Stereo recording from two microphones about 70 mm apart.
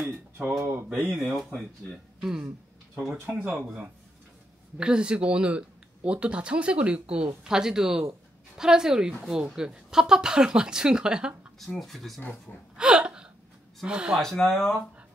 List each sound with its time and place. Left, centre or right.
0.6 s speech: right
1.1 s speech: centre
3.0 s speech: right
4.7 s speech: centre
11.6 s speech: centre
12.7 s a sound: centre
13.8 s speech: centre
14.2 s speech: centre